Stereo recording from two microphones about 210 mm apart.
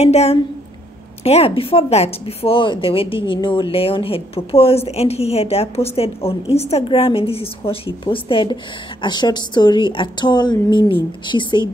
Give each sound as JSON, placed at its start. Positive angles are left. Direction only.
{"t": 0.0, "sound": "speech", "side_deg": 30}